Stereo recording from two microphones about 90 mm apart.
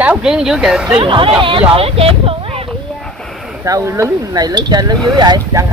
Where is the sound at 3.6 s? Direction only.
35° right (ahead or behind).